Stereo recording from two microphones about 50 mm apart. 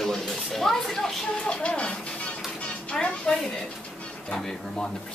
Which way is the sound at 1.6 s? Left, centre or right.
Left.